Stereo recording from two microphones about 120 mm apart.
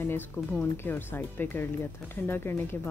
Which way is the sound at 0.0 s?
15° left (ahead or behind).